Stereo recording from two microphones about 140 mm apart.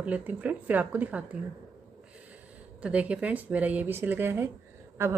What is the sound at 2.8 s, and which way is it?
A woman's voice, 10° right (ahead or behind).